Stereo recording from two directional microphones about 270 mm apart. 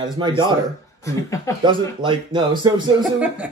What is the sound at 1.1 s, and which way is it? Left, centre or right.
Speech, centre.